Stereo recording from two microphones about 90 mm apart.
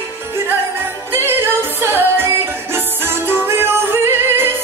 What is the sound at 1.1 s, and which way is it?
Music, 25° right (ahead or behind).